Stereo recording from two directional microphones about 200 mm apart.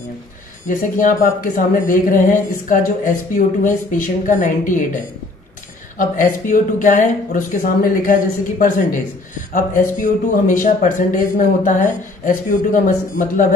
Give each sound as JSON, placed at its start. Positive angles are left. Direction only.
{"t": 0.7, "sound": "a man's voice", "side_deg": 40}
{"t": 5.9, "sound": "a man's voice", "side_deg": 40}